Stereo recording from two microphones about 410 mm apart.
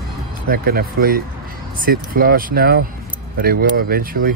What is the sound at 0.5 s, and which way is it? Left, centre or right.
Speech, right.